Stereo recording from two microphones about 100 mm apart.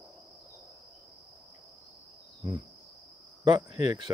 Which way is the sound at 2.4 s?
40° right (ahead or behind).